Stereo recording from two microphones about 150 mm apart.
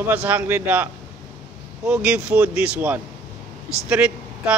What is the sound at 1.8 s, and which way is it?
Speech, 10° right (ahead or behind).